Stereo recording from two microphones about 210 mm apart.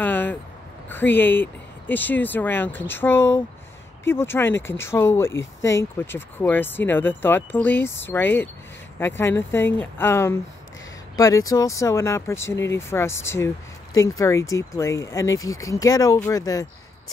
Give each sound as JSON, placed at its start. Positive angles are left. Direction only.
{"t": 0.0, "sound": "vehicle", "side_deg": 10}
{"t": 0.8, "sound": "speech", "side_deg": 10}